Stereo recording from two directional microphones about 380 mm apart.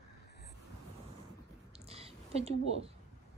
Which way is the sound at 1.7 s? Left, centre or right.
Centre.